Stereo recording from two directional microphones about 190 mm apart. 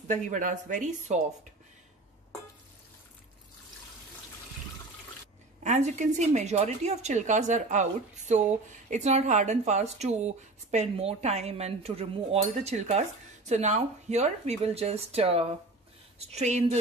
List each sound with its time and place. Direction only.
0.1 s a woman's voice: 40° right (ahead or behind)
5.6 s a woman's voice: 35° right (ahead or behind)